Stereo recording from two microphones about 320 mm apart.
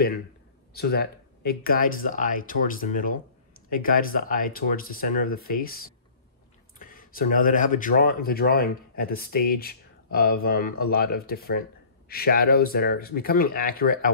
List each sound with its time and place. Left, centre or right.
0.7 s speech: left